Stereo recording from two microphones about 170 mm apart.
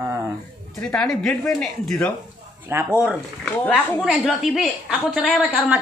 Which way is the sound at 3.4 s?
10° left (ahead or behind).